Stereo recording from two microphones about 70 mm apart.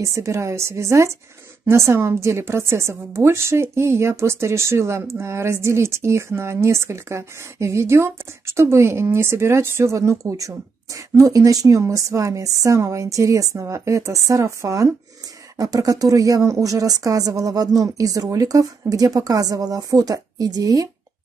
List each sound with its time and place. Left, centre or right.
0.0 s a woman's voice: right
15.5 s speech: right